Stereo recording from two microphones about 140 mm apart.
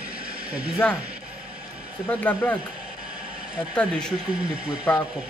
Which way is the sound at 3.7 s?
5° left (ahead or behind).